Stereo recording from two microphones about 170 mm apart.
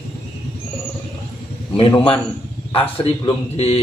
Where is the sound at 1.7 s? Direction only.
30° left (ahead or behind).